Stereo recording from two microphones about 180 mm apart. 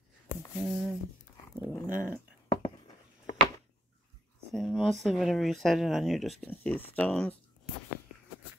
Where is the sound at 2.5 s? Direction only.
25° left (ahead or behind).